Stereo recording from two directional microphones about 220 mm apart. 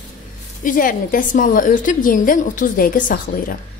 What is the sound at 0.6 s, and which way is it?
A woman's voice, 40° left (ahead or behind).